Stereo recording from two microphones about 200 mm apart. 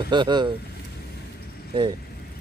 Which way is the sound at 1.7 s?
25° right (ahead or behind).